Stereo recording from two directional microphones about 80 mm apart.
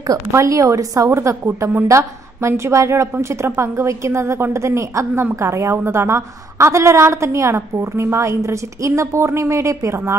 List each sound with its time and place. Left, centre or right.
0.3 s a woman's voice: right